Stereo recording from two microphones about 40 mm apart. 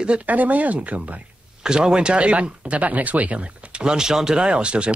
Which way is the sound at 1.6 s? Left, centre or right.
Centre.